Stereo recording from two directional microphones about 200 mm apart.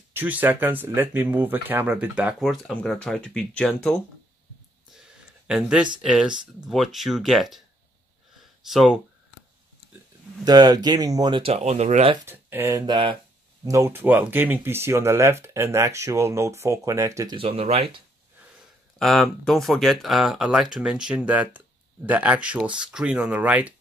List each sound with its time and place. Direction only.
0.1 s speech: 10° right (ahead or behind)
5.5 s speech: 5° right (ahead or behind)
8.6 s speech: centre (ahead or behind)
10.4 s speech: 20° right (ahead or behind)
12.3 s speech: 10° right (ahead or behind)
17.4 s speech: 30° right (ahead or behind)
18.9 s speech: centre (ahead or behind)